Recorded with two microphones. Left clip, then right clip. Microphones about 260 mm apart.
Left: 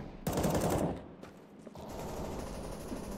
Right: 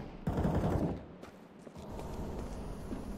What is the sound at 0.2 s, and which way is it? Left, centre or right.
Machine gun, left.